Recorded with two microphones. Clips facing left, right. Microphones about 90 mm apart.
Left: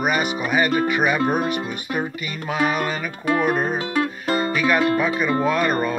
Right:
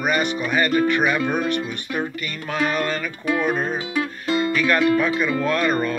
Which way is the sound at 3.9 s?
45° left (ahead or behind).